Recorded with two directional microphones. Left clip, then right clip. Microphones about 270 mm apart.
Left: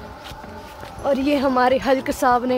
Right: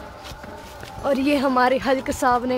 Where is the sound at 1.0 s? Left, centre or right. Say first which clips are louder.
Left 1 dB; centre.